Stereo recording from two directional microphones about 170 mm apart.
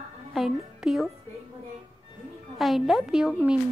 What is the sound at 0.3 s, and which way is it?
Speech, centre (ahead or behind).